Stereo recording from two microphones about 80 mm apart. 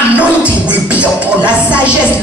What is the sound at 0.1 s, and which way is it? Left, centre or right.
Music, centre.